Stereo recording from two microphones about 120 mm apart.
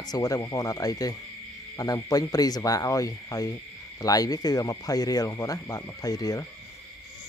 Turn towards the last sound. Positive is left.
turn(degrees=30)  # may be behind; listen again after turning